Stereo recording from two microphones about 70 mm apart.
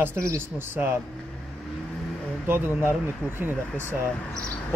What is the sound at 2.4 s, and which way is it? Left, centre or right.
Speech, right.